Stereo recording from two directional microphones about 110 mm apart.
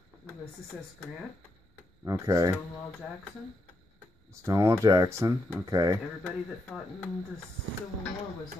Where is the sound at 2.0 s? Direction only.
35° right (ahead or behind).